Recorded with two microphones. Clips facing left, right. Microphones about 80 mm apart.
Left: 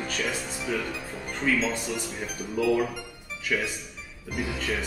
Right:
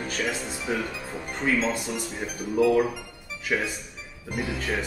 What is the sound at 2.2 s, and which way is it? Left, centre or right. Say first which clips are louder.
Speech: right 8 dB; right.